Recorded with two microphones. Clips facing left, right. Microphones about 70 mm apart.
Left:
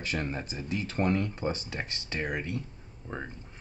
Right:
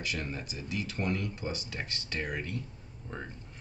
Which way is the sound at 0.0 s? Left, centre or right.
Left.